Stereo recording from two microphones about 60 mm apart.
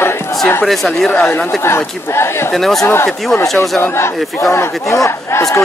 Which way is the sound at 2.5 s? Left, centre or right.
Centre.